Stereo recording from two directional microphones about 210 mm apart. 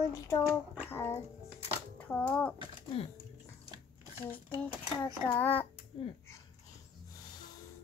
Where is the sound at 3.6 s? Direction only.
15° right (ahead or behind).